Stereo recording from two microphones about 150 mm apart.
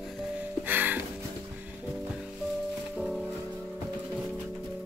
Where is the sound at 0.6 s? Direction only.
10° right (ahead or behind).